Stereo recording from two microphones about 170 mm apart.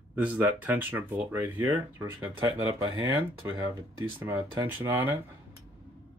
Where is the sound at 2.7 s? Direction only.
15° right (ahead or behind).